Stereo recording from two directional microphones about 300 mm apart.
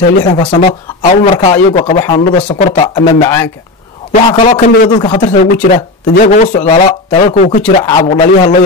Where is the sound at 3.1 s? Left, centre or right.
Centre.